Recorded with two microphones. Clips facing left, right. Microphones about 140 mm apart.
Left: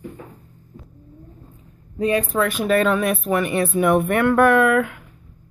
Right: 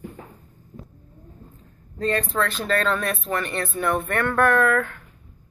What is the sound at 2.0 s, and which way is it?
Speech, 15° left (ahead or behind).